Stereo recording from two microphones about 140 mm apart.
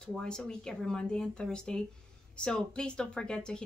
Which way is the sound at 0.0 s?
5° left (ahead or behind).